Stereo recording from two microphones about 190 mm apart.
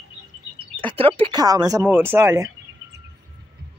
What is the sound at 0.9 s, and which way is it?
Speech, 30° right (ahead or behind).